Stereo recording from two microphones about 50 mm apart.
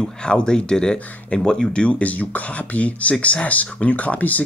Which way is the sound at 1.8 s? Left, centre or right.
Left.